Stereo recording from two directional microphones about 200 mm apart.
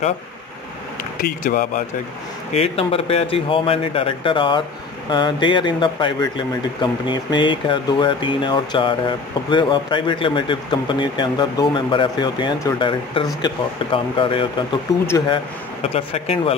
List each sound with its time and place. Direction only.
1.2 s speech: 45° left (ahead or behind)
2.5 s speech: 30° left (ahead or behind)